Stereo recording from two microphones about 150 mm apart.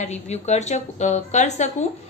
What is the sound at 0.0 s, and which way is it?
A woman's voice, 50° left (ahead or behind).